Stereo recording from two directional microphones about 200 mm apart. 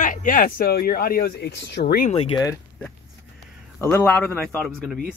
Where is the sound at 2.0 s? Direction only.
30° left (ahead or behind).